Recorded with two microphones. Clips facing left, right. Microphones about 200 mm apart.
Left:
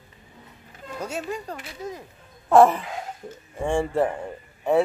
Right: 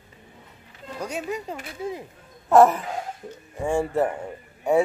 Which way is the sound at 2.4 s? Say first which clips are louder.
Even; 5° right (ahead or behind).